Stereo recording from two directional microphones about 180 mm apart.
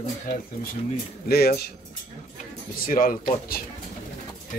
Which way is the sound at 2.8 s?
50° left (ahead or behind).